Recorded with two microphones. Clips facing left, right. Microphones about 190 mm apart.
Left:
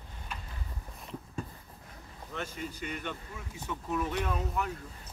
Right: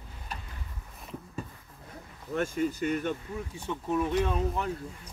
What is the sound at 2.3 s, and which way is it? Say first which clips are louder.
Speech: right 10 dB; 45° right (ahead or behind).